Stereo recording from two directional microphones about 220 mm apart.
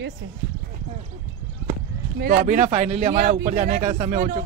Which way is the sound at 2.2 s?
40° right (ahead or behind).